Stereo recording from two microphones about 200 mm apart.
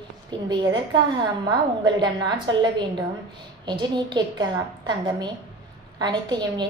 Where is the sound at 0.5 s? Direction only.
25° right (ahead or behind).